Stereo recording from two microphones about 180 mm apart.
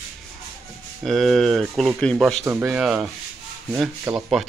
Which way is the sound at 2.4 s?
15° right (ahead or behind).